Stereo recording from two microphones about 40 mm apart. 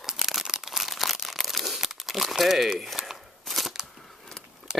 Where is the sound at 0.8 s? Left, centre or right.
Centre.